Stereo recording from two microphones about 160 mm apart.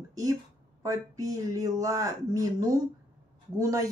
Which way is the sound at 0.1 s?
20° right (ahead or behind).